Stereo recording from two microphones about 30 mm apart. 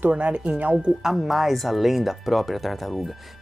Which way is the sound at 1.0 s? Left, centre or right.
Centre.